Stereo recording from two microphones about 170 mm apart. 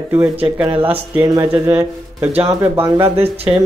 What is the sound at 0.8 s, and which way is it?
Speech, 15° right (ahead or behind).